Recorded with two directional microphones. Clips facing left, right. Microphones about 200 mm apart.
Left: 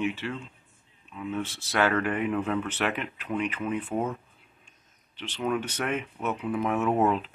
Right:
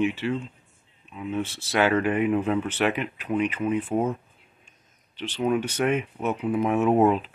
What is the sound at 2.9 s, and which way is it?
Speech, 10° right (ahead or behind).